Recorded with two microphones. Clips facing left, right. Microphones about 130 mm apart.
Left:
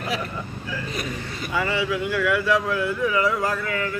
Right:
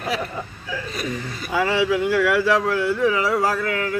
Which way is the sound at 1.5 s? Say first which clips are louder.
Right 5 dB; 90° right.